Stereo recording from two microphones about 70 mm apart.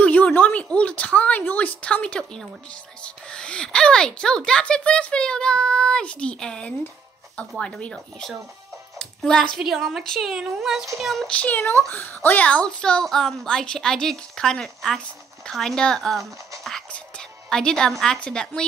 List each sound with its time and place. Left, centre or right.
0.0 s a woman's voice: left
8.9 s music: centre
9.6 s a woman's voice: centre
10.3 s a woman's voice: centre
11.2 s a woman's voice: centre
17.5 s a woman's voice: centre